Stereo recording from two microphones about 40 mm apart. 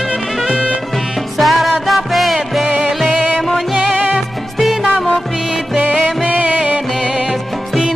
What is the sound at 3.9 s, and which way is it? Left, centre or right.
Music, right.